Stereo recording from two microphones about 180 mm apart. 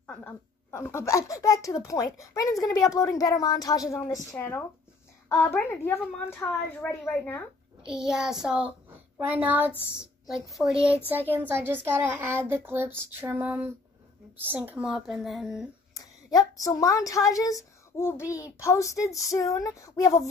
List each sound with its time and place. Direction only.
0.0 s a child's voice: 10° left (ahead or behind)
7.8 s speech: 5° right (ahead or behind)
16.0 s a child's voice: 20° left (ahead or behind)